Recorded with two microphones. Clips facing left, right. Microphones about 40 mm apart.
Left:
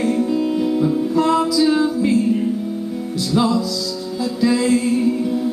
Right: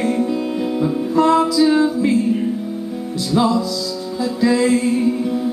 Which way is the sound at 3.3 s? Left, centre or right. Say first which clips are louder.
Right 1 dB; centre.